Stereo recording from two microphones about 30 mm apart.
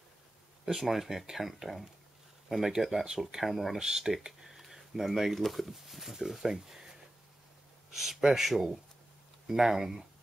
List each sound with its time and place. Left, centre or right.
0.7 s speech: centre
2.5 s speech: right
3.4 s speech: centre
3.7 s speech: centre
4.4 s a sound: centre
5.3 s speech: centre
7.9 s speech: centre